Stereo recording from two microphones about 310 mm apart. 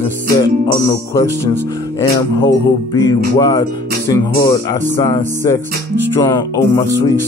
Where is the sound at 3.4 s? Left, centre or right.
Centre.